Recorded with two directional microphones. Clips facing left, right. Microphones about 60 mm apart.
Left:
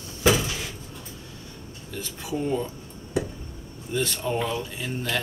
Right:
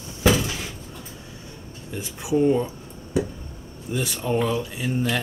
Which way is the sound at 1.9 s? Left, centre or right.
Centre.